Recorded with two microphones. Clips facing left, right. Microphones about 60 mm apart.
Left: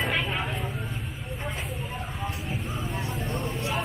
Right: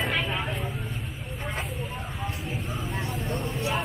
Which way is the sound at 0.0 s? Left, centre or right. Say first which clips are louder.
Even; centre.